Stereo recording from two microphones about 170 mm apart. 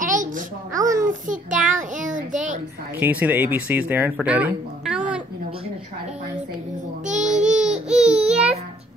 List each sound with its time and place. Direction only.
0.0 s a sound: 50° right (ahead or behind)
0.7 s a sound: 20° right (ahead or behind)
1.0 s child singing: 50° right (ahead or behind)
3.0 s speech: 10° right (ahead or behind)
7.1 s baby cry: 45° right (ahead or behind)
7.3 s baby cry: 5° right (ahead or behind)